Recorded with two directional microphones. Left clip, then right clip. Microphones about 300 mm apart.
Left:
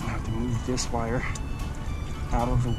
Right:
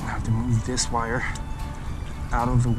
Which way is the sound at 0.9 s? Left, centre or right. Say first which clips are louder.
Right 5 dB; right.